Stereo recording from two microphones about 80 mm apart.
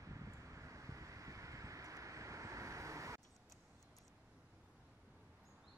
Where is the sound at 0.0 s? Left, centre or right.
Right.